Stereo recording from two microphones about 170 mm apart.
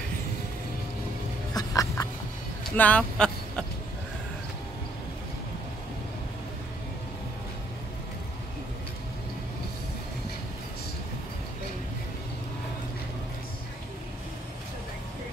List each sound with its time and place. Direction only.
1.5 s music: 20° left (ahead or behind)
2.6 s speech: 10° left (ahead or behind)